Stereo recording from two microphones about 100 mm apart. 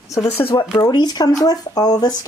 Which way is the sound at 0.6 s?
40° left (ahead or behind).